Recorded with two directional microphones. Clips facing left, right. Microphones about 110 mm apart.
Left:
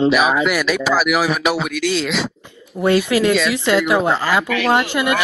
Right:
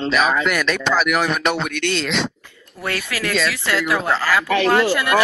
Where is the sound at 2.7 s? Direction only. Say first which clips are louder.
Left 11 dB; 20° left (ahead or behind).